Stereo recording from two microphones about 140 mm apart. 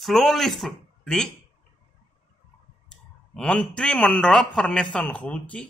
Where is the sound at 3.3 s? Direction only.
5° left (ahead or behind).